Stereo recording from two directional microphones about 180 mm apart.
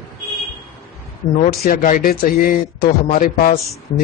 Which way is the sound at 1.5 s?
55° left (ahead or behind).